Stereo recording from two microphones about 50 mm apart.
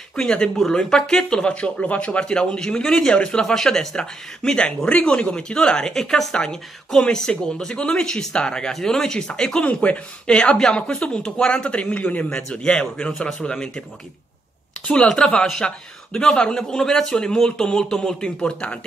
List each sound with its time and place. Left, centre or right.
0.1 s speech: centre
13.0 s speech: centre
14.9 s speech: centre